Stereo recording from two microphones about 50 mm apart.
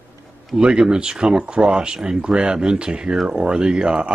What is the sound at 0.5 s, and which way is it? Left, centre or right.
Speech, centre.